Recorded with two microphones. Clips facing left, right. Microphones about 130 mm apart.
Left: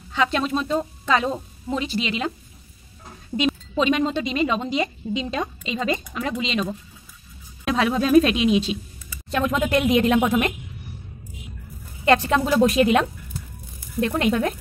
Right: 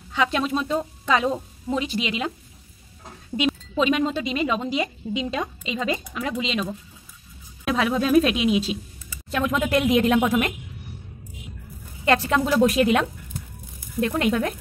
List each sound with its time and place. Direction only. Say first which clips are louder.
0.1 s a woman's voice: left 1 dB; 10° right (ahead or behind)
3.3 s speech: left 1 dB; 5° right (ahead or behind)
12.0 s speech: left 2 dB; centre (ahead or behind)